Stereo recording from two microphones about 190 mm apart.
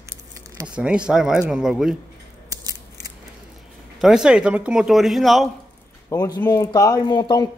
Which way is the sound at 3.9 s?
Centre (ahead or behind).